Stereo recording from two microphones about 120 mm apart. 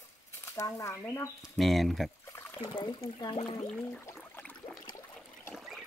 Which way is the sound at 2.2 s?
20° left (ahead or behind).